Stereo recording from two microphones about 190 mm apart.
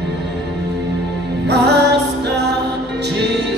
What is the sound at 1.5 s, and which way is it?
Music, 60° right (ahead or behind).